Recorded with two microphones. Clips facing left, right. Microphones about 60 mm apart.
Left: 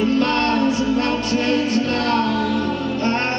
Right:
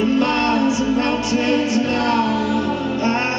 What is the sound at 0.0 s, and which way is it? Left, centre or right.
Music, centre.